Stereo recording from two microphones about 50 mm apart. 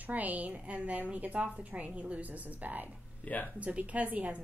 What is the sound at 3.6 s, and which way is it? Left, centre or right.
Speech, right.